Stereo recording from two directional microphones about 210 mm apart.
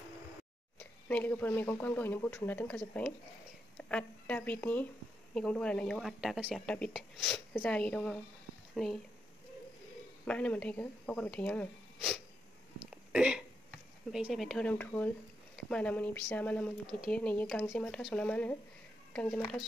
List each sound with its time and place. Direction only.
0.7 s a woman's voice: 5° left (ahead or behind)
10.2 s a woman's voice: 5° left (ahead or behind)
13.1 s hiccup: 5° right (ahead or behind)
14.1 s a woman's voice: centre (ahead or behind)